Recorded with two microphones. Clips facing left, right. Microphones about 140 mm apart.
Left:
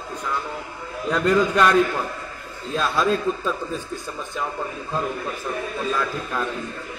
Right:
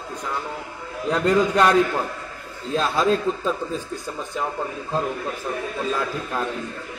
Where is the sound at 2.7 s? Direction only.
20° right (ahead or behind).